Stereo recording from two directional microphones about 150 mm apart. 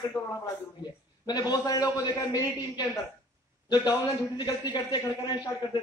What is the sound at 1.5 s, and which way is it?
A man's voice, 25° left (ahead or behind).